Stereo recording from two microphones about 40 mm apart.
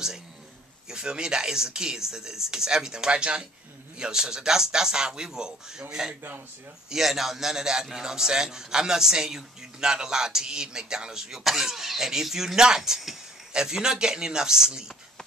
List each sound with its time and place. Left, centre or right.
0.8 s a man's voice: centre